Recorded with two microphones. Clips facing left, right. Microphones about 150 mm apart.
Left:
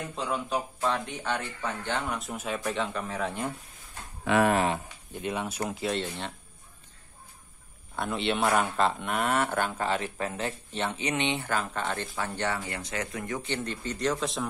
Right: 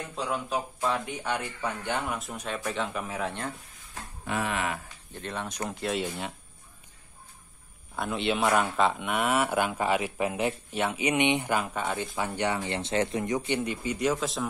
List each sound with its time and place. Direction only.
0.1 s speech: centre (ahead or behind)
2.1 s speech: centre (ahead or behind)
4.2 s speech: 90° left
5.1 s speech: 10° left (ahead or behind); by 6.3 s 10° right (ahead or behind)
7.9 s speech: centre (ahead or behind)